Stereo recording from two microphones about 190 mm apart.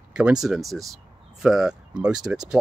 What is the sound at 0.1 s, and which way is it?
Speech, 5° right (ahead or behind).